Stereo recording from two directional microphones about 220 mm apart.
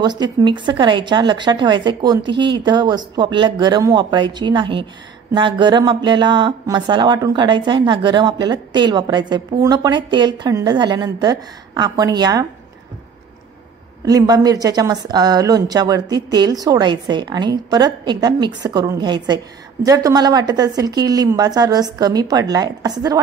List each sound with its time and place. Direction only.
0.0 s speech: 20° right (ahead or behind)
14.0 s speech: 15° right (ahead or behind)